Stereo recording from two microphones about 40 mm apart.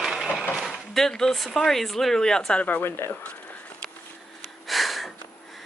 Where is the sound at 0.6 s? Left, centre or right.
Centre.